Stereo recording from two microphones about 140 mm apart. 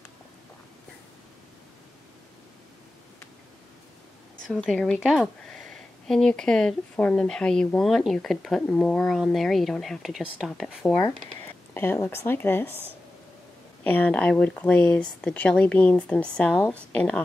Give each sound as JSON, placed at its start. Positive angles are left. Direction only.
{"t": 4.6, "sound": "speech", "side_deg": 5}
{"t": 11.7, "sound": "speech", "side_deg": 15}
{"t": 13.8, "sound": "speech", "side_deg": 10}